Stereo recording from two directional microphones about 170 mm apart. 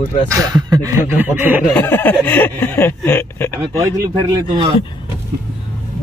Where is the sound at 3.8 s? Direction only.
25° right (ahead or behind).